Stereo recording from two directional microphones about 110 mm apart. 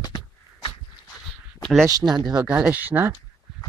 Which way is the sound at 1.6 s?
5° left (ahead or behind).